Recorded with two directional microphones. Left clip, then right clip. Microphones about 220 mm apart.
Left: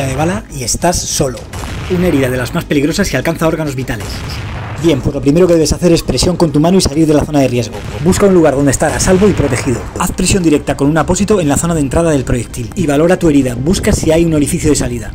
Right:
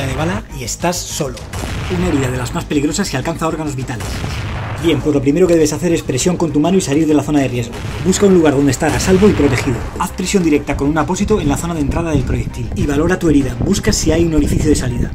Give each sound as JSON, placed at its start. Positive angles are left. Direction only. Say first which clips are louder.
{"t": 0.0, "sound": "speech", "louder": "left 4 dB", "side_deg": 10}
{"t": 4.8, "sound": "speech", "louder": "left 2 dB", "side_deg": 20}
{"t": 8.4, "sound": "speech", "louder": "left 3 dB", "side_deg": 10}
{"t": 8.8, "sound": "speech", "louder": "left 2 dB", "side_deg": 0}
{"t": 9.9, "sound": "speech", "louder": "left 2 dB", "side_deg": 20}